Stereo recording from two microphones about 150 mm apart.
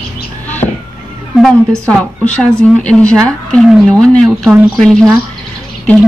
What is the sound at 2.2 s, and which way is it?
Speech, 10° left (ahead or behind).